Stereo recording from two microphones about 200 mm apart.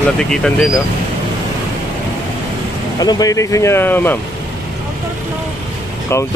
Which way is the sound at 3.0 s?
20° left (ahead or behind).